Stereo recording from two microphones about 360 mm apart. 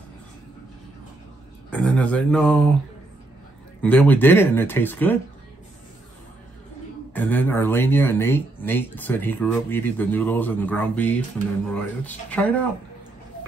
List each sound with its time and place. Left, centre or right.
1.7 s speech: centre
3.8 s speech: centre
7.2 s speech: centre